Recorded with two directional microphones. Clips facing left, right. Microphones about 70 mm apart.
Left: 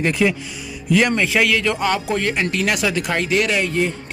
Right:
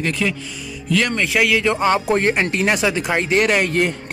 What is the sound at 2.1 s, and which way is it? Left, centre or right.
Speech, right.